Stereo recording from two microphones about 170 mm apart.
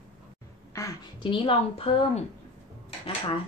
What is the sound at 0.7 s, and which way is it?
A woman's voice, 25° left (ahead or behind).